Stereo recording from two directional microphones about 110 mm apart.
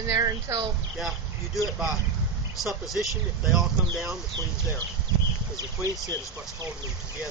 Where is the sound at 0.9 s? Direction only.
Centre (ahead or behind).